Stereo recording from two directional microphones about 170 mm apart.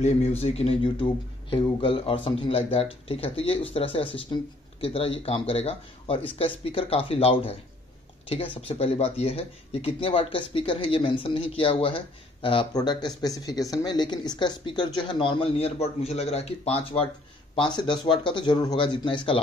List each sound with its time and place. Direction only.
0.4 s speech: 35° left (ahead or behind)